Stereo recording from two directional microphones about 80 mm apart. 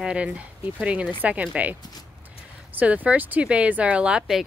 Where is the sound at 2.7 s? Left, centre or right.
Centre.